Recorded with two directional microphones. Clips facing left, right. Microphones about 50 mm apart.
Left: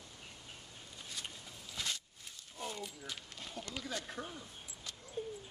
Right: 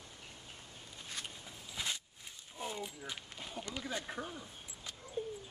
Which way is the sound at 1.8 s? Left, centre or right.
Centre.